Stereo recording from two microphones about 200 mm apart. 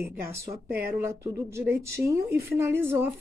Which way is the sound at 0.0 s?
10° right (ahead or behind).